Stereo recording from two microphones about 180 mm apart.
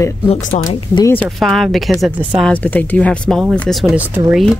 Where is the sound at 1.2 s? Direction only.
Centre (ahead or behind).